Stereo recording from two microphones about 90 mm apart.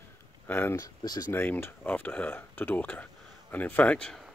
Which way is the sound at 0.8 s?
50° left (ahead or behind).